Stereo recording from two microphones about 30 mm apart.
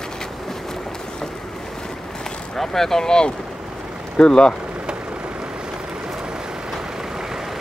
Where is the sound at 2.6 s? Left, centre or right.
Centre; by 4.5 s left.